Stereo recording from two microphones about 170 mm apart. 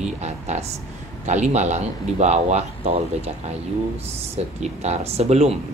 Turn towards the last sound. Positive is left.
turn(degrees=-40)  # may be behind; listen again after turning